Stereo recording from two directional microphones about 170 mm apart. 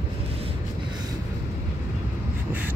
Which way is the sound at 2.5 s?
10° right (ahead or behind).